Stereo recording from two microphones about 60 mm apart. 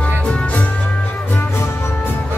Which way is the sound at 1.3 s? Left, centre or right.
Left.